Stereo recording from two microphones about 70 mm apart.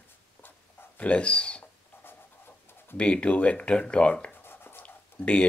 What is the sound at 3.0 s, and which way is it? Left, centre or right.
Speech, centre.